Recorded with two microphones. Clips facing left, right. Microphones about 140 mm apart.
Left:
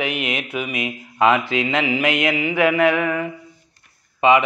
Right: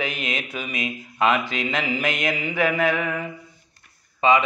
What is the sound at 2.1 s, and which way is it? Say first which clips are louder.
Mantra: left 5 dB; 65° left (ahead or behind).